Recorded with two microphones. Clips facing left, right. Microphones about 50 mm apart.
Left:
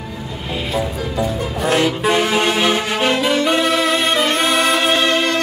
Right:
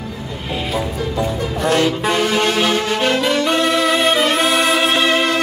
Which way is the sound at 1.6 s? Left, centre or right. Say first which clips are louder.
Even; centre.